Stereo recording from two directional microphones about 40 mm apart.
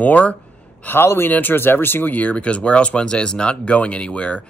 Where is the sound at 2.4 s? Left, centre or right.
Left.